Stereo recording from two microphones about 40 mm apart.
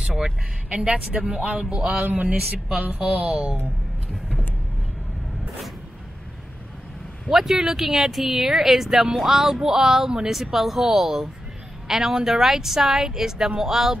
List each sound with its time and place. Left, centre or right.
0.0 s speech: centre
0.7 s speech: right
2.0 s speech: right
7.2 s speech: centre